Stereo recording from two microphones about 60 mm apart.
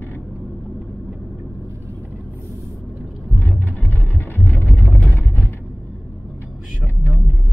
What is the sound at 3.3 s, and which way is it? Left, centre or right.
Vehicle, left.